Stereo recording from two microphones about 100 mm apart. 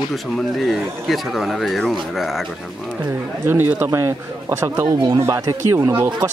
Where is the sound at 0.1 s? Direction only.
Centre (ahead or behind).